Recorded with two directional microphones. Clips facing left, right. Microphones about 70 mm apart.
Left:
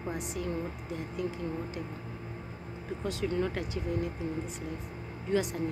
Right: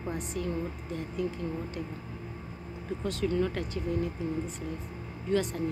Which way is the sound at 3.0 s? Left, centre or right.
Centre.